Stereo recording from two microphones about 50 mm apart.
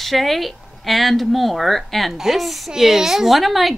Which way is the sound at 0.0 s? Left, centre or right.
Centre.